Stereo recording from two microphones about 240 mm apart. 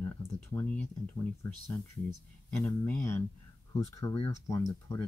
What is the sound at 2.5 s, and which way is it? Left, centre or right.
Speech, centre.